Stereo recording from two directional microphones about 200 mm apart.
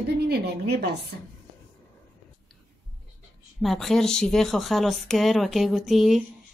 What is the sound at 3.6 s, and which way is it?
Speech, centre (ahead or behind).